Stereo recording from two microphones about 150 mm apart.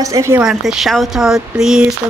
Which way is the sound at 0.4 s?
5° right (ahead or behind).